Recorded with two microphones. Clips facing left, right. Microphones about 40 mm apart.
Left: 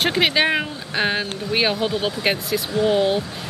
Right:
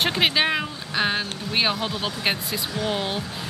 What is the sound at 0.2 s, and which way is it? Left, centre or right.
Speech, centre.